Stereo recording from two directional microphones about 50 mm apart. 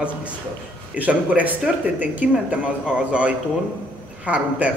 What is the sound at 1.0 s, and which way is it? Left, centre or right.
A man's voice, right.